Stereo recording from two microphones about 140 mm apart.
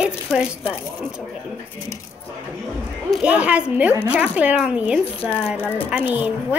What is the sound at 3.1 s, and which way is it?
A woman's voice, 10° right (ahead or behind).